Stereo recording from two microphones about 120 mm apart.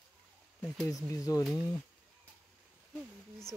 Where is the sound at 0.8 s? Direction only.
30° left (ahead or behind).